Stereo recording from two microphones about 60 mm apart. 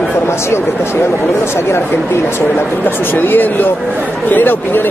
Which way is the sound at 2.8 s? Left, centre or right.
Left.